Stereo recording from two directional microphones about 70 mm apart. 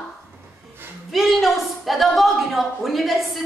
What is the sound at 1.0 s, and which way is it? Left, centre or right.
A woman's voice, centre.